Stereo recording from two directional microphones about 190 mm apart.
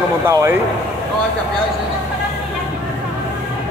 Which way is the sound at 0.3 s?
15° right (ahead or behind).